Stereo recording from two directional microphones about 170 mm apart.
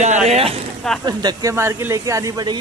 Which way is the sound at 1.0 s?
20° right (ahead or behind).